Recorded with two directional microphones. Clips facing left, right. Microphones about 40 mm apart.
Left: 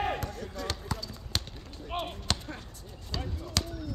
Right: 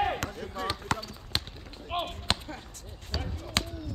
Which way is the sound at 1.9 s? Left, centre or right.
Right.